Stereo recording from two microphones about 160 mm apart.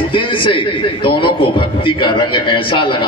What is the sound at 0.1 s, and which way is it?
A man's voice, 30° left (ahead or behind).